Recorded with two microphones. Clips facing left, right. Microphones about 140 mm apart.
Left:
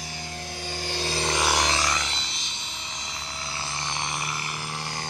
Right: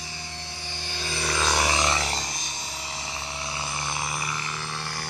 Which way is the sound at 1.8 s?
30° right (ahead or behind).